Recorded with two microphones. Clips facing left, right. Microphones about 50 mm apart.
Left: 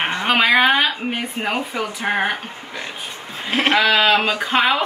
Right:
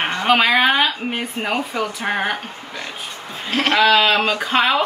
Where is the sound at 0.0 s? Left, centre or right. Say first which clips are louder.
Right 2 dB; centre.